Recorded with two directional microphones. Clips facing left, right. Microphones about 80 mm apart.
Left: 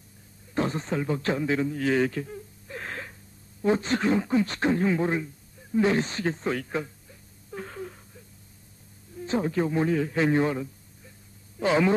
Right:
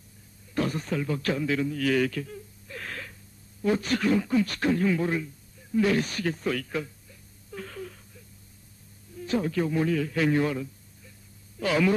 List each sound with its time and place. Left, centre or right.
0.6 s a man's voice: left
7.5 s wail: left
9.2 s speech: left